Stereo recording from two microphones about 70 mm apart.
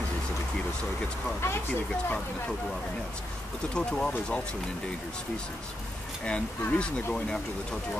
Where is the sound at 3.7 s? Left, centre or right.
Centre.